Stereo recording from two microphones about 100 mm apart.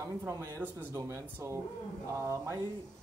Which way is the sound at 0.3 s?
25° right (ahead or behind).